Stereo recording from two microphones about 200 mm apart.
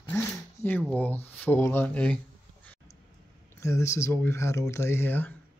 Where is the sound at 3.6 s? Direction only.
15° left (ahead or behind).